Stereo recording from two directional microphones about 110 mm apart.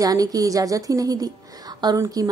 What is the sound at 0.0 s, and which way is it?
Speech, 35° right (ahead or behind).